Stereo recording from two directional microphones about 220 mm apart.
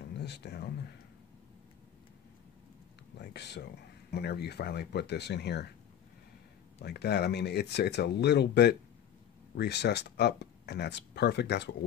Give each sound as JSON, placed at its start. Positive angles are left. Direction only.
{"t": 0.2, "sound": "speech", "side_deg": 50}
{"t": 3.2, "sound": "speech", "side_deg": 50}
{"t": 6.8, "sound": "speech", "side_deg": 50}